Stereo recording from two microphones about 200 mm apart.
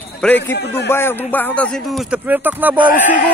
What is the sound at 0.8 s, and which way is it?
A man's voice, 10° left (ahead or behind).